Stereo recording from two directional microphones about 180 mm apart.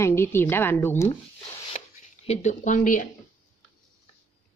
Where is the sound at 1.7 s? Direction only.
35° left (ahead or behind).